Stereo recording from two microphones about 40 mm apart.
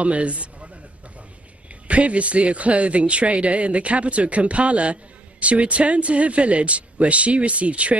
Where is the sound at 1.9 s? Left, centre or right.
Right.